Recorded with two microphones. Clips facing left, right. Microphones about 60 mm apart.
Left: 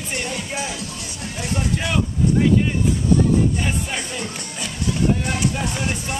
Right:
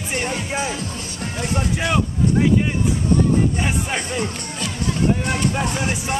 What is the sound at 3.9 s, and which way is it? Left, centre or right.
Speech, right.